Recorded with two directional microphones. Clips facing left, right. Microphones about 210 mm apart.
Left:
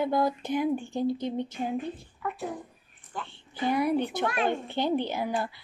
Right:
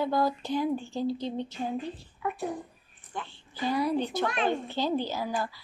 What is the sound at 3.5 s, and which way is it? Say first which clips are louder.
Speech: left 2 dB; 20° left (ahead or behind).